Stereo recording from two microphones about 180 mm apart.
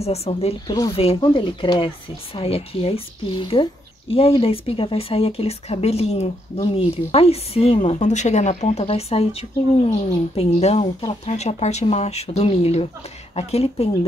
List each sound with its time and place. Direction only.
0.0 s speech: 35° left (ahead or behind)